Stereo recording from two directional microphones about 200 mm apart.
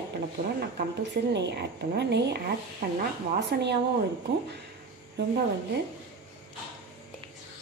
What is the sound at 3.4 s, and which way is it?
Speech, 60° right (ahead or behind).